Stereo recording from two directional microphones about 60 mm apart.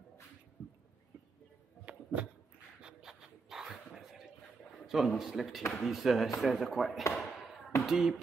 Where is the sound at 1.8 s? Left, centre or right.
Right.